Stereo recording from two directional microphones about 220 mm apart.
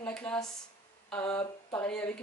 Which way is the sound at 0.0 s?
5° left (ahead or behind).